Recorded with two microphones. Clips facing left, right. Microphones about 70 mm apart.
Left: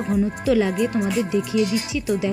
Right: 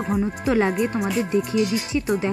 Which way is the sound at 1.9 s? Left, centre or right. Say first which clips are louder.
Even; right.